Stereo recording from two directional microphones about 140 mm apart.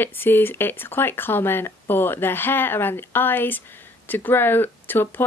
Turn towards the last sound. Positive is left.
turn(degrees=15)  # may be behind; listen again after turning